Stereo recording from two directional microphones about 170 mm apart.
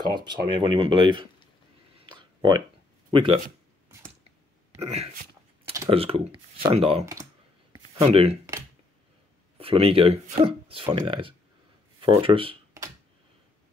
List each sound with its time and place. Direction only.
0.0 s speech: 25° right (ahead or behind)
2.0 s a sound: 30° right (ahead or behind)
3.1 s speech: 30° right (ahead or behind)
4.7 s speech: 40° right (ahead or behind)
8.1 s speech: 35° right (ahead or behind)
9.6 s speech: 35° right (ahead or behind)